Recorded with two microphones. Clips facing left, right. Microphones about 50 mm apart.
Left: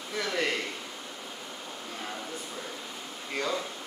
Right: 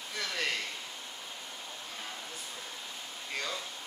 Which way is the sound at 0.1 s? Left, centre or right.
Centre.